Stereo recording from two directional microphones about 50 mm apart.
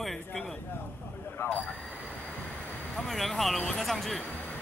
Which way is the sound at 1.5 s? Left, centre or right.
Left.